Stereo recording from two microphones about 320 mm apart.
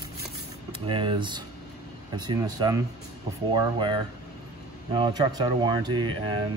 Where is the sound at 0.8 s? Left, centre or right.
Centre.